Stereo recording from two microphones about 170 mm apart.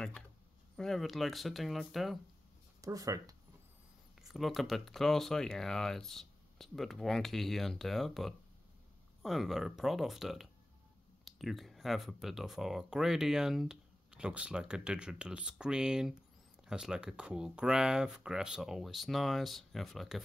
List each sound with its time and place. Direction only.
0.7 s speech: centre (ahead or behind)
2.8 s speech: 20° right (ahead or behind)
4.2 s speech: centre (ahead or behind)